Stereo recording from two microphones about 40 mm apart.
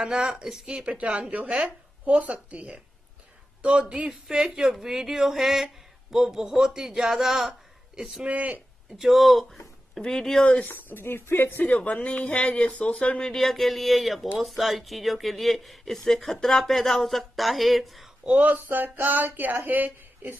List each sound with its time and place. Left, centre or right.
0.0 s speech: centre
0.9 s a woman's voice: right
4.1 s speech: centre
8.3 s a woman's voice: right
8.9 s speech: centre
10.0 s speech: centre
10.4 s speech: left
10.7 s speech: left
11.6 s speech: left
13.3 s speech: centre
18.2 s speech: right
18.5 s speech: right